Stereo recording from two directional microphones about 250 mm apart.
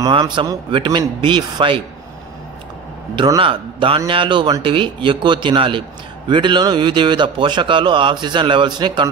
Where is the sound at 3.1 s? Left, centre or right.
Centre.